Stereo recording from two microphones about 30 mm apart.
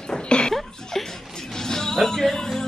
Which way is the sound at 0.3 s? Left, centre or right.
Left.